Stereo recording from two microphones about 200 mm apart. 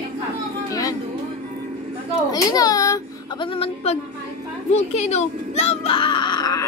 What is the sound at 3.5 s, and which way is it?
Speech, 30° left (ahead or behind).